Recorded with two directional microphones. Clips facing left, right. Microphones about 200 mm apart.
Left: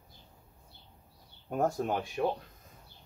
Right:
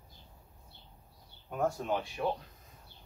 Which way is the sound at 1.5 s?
45° left (ahead or behind).